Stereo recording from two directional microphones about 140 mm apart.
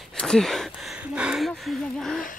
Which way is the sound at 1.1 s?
5° right (ahead or behind).